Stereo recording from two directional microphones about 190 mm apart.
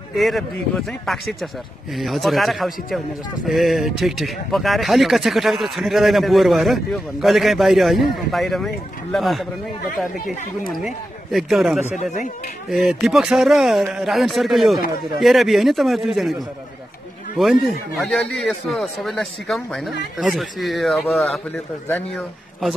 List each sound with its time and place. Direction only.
0.1 s speech: centre (ahead or behind)
9.8 s speech: 50° left (ahead or behind)
11.3 s speech: centre (ahead or behind)
11.8 s speech: 40° left (ahead or behind)
12.6 s speech: centre (ahead or behind)
17.4 s speech: centre (ahead or behind)